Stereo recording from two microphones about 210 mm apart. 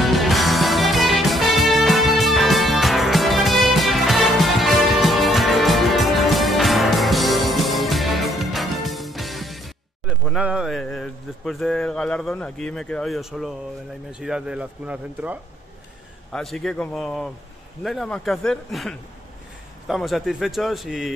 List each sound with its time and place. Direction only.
0.0 s music: centre (ahead or behind)
14.2 s a man's voice: 5° right (ahead or behind)